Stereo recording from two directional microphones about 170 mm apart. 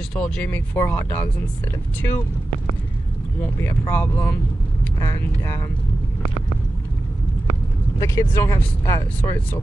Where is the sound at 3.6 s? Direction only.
15° left (ahead or behind).